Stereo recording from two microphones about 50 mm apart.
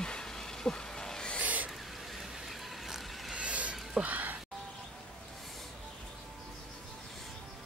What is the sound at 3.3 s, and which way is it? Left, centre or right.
Vehicle, right.